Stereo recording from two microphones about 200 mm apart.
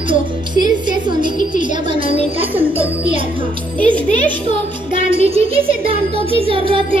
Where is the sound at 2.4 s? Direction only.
10° right (ahead or behind).